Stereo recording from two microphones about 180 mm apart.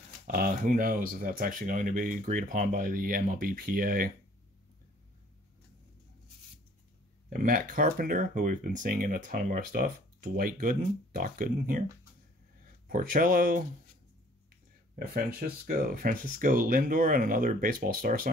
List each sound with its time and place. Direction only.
0.3 s speech: 50° right (ahead or behind)
7.2 s speech: 50° right (ahead or behind)
12.8 s speech: 55° right (ahead or behind)
15.0 s speech: 55° right (ahead or behind)